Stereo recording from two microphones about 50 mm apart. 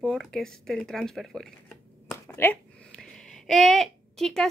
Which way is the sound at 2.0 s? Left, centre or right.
Left.